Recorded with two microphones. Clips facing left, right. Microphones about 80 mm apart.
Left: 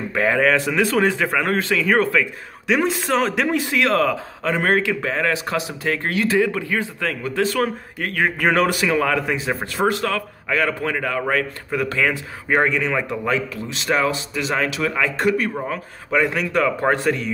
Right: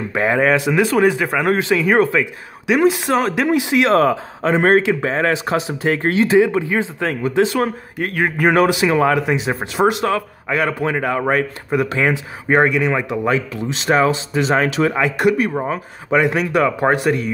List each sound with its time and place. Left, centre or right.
0.1 s speech: centre
2.6 s speech: centre
3.5 s a man's voice: centre
15.5 s a man's voice: right